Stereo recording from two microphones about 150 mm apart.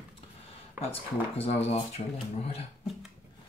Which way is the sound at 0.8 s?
15° right (ahead or behind).